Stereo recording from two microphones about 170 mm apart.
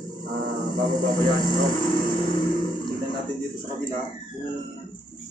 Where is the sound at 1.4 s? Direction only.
25° left (ahead or behind).